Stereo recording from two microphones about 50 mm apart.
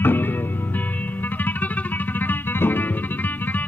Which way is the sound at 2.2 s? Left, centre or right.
Left.